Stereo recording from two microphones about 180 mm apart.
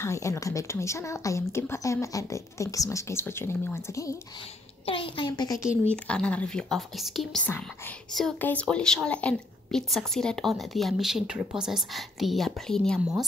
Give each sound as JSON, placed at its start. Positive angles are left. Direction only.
{"t": 0.0, "sound": "a woman's voice", "side_deg": 15}
{"t": 4.8, "sound": "speech", "side_deg": 30}
{"t": 5.9, "sound": "a woman's voice", "side_deg": 5}